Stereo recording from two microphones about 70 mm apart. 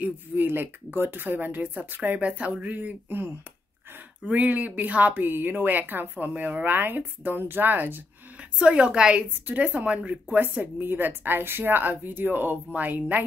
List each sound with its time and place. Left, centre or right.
0.0 s speech: right
8.4 s a woman's voice: centre